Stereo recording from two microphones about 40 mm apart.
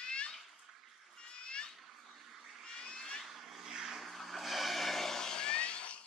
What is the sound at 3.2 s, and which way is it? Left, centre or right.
Vehicle, centre.